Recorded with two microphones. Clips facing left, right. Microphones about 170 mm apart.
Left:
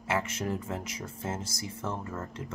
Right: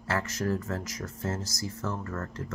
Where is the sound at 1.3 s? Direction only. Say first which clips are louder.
Right 2 dB; 25° left (ahead or behind).